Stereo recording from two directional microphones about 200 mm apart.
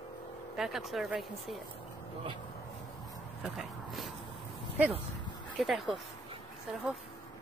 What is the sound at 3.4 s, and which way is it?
Dog, centre (ahead or behind).